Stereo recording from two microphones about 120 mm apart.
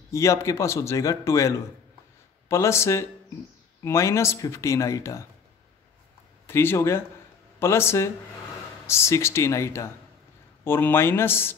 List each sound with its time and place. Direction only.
0.1 s a man's voice: 25° left (ahead or behind)
6.4 s a man's voice: 20° left (ahead or behind)